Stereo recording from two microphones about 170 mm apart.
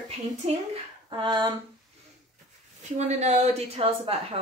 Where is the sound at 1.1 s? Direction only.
25° right (ahead or behind).